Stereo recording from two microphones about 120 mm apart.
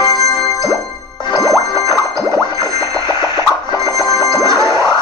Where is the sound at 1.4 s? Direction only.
30° left (ahead or behind).